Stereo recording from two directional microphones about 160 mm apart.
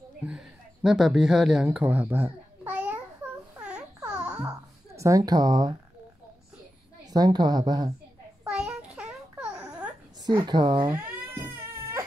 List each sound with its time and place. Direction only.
0.3 s speech: 5° right (ahead or behind)
3.5 s babbling: 5° right (ahead or behind)
4.9 s a woman's voice: 20° right (ahead or behind)
7.1 s a woman's voice: 25° right (ahead or behind)
8.5 s babbling: 5° right (ahead or behind)
10.2 s a woman's voice: 25° right (ahead or behind)
10.9 s cat: 15° right (ahead or behind)